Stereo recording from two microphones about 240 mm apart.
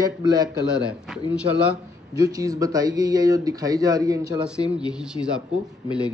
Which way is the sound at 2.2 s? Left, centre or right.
Centre.